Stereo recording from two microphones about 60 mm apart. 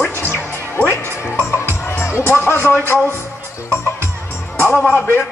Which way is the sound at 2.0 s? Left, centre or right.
Left.